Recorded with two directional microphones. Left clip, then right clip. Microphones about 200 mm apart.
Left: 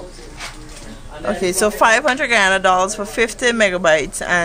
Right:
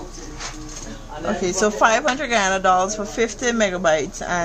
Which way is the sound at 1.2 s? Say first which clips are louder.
Left 3 dB; 15° left (ahead or behind).